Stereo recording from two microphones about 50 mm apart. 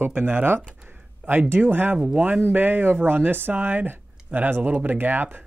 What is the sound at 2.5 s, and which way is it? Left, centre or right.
Speech, right.